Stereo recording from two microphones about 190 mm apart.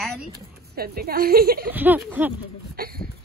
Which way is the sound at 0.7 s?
55° right (ahead or behind).